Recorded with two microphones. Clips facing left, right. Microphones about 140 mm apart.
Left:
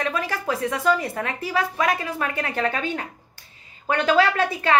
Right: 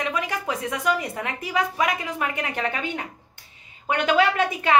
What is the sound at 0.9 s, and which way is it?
A woman's voice, 20° right (ahead or behind).